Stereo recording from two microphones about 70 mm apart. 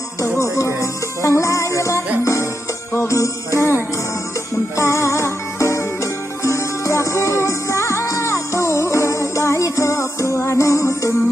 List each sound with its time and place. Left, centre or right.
1.2 s music: left